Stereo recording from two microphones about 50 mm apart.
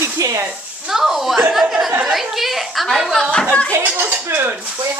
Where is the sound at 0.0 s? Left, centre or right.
Right.